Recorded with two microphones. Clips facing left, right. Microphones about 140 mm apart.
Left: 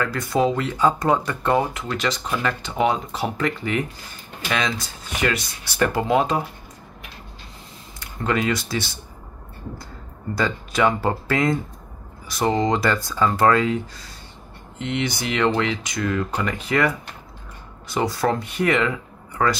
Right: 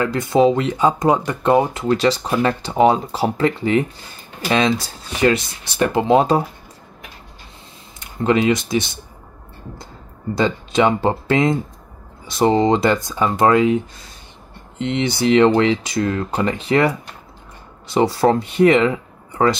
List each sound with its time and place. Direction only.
0.0 s speech: 25° right (ahead or behind)
8.0 s speech: 20° right (ahead or behind)
10.3 s speech: 25° right (ahead or behind)